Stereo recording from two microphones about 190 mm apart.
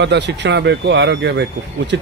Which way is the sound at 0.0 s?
65° right (ahead or behind).